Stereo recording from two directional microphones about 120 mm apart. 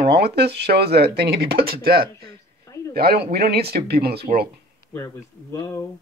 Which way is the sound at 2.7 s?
25° left (ahead or behind).